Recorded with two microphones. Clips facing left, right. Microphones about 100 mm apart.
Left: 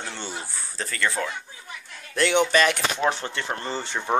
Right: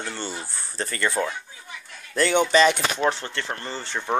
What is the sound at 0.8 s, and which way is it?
Speech, 5° right (ahead or behind).